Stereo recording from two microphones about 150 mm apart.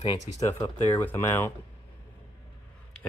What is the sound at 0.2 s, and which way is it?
Speech, 50° left (ahead or behind).